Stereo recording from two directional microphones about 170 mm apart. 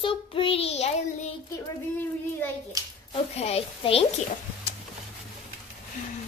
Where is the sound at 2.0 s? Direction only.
10° left (ahead or behind).